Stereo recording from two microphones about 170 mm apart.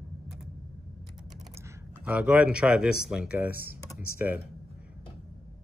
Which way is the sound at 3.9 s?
10° right (ahead or behind).